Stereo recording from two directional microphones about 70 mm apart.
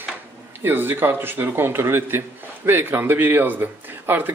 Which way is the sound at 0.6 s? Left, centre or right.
Right.